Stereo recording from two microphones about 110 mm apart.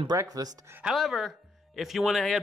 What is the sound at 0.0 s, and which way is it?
Speech, 35° right (ahead or behind).